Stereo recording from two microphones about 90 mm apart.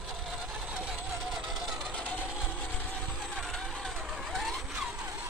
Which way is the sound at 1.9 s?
15° left (ahead or behind).